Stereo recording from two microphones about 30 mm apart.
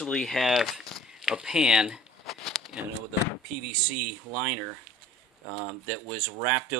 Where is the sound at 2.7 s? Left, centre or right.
Right.